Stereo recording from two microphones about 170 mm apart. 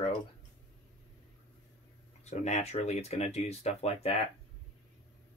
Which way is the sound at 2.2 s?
40° left (ahead or behind).